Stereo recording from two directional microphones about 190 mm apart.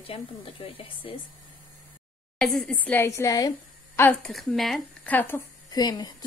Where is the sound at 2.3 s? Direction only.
Centre (ahead or behind).